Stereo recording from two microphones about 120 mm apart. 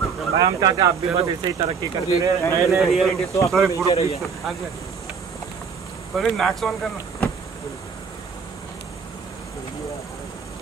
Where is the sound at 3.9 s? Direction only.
60° left (ahead or behind).